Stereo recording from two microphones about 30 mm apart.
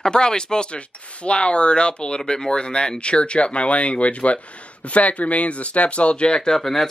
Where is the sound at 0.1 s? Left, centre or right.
Left.